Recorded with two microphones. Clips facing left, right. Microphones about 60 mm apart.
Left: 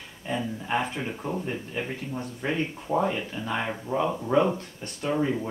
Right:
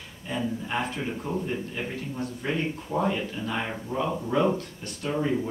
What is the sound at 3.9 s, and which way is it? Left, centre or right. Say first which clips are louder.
Speech: left 3 dB; left.